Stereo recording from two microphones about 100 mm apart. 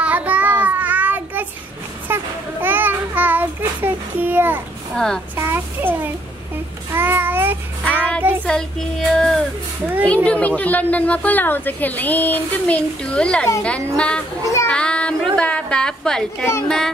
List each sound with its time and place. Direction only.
0.0 s child singing: 15° right (ahead or behind)
4.9 s a child's voice: 5° left (ahead or behind)
5.3 s child singing: 25° right (ahead or behind)
7.8 s child singing: 15° left (ahead or behind)
8.5 s speech: 5° left (ahead or behind)
14.7 s child singing: 10° left (ahead or behind)
15.3 s a sound: 10° left (ahead or behind)
16.6 s speech: 5° left (ahead or behind)